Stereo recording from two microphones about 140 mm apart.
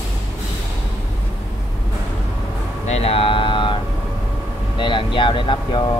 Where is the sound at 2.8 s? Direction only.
50° left (ahead or behind).